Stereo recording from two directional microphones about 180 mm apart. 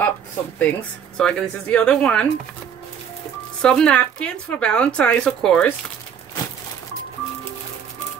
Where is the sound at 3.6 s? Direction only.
5° left (ahead or behind).